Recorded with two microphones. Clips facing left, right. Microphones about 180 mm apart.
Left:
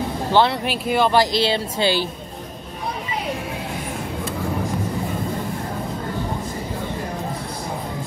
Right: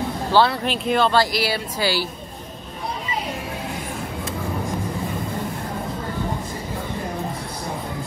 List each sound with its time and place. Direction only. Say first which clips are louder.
0.3 s speech: even; 20° left (ahead or behind)